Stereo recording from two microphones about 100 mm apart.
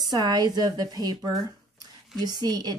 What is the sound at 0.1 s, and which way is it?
Speech, 45° right (ahead or behind).